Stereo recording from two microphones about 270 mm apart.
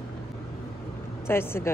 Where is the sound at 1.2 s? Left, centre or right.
Centre.